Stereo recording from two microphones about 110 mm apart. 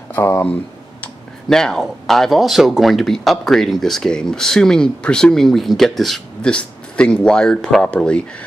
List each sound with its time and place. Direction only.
0.1 s speech: 20° left (ahead or behind)
1.0 s speech: 5° left (ahead or behind)